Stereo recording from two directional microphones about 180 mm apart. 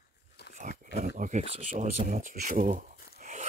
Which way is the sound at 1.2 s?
45° right (ahead or behind).